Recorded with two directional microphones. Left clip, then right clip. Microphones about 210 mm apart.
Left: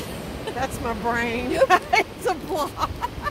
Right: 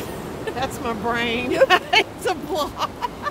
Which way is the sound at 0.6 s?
20° left (ahead or behind).